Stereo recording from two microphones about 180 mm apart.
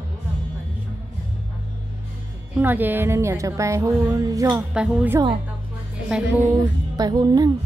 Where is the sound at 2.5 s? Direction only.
10° right (ahead or behind).